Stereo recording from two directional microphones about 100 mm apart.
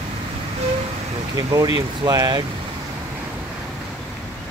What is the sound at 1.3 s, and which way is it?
Speech, 40° right (ahead or behind).